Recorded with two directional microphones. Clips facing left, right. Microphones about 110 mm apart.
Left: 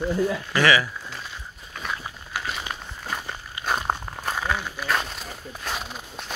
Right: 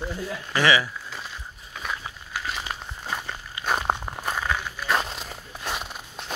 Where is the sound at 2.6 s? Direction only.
Centre (ahead or behind).